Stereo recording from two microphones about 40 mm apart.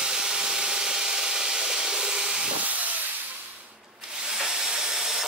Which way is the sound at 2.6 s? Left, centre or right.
Right.